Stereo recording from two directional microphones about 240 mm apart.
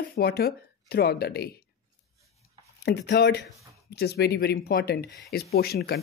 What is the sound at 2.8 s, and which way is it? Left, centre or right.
Speech, left.